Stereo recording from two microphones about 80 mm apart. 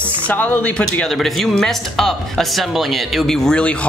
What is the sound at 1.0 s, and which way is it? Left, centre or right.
Speech, centre.